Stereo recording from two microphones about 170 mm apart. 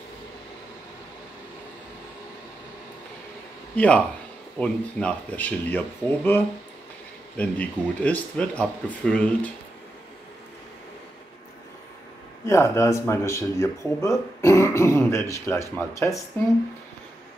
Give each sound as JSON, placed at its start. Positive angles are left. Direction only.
{"t": 3.7, "sound": "speech", "side_deg": 5}
{"t": 12.4, "sound": "speech", "side_deg": 15}